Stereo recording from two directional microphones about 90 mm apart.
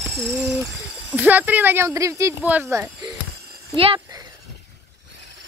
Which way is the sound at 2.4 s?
15° right (ahead or behind).